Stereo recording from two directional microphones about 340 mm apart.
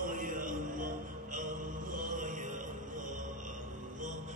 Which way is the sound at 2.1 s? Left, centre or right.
Right.